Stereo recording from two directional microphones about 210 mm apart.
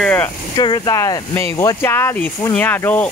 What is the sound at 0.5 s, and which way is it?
Speech, 20° left (ahead or behind).